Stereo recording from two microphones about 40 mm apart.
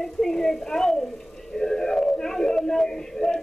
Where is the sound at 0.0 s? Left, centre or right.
Centre.